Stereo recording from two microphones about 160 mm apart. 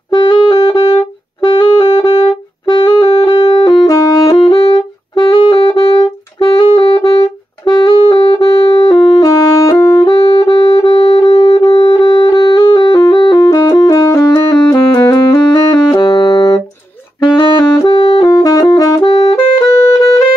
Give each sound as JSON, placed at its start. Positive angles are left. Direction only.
{"t": 0.1, "sound": "music", "side_deg": 30}
{"t": 17.2, "sound": "saxophone", "side_deg": 25}